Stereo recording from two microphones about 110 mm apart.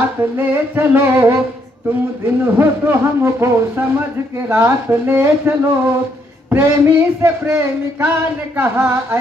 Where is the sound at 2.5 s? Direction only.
20° right (ahead or behind).